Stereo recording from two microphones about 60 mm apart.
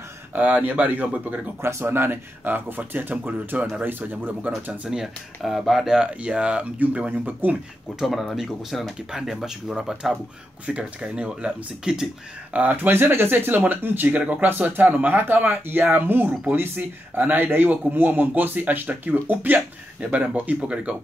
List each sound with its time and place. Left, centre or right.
0.3 s speech: right
1.6 s speech: right
4.8 s speech: centre
5.4 s speech: centre
5.9 s speech: right
8.0 s speech: centre
12.5 s speech: right